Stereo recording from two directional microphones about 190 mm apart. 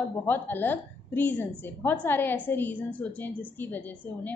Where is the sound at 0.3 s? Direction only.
10° left (ahead or behind).